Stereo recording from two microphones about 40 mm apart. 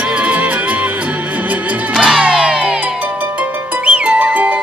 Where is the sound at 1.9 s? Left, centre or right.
Centre.